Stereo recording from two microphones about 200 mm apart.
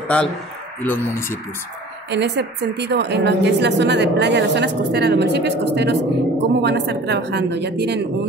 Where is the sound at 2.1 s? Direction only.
60° right (ahead or behind).